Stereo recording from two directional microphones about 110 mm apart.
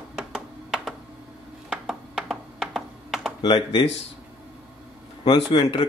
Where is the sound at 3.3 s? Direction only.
50° left (ahead or behind).